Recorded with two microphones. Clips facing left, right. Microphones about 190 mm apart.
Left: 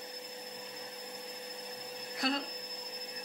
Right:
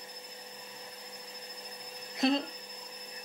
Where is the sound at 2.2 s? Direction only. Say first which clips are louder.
Right 7 dB; 20° right (ahead or behind).